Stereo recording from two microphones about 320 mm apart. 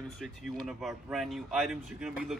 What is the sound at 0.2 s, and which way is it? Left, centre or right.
Speech, centre.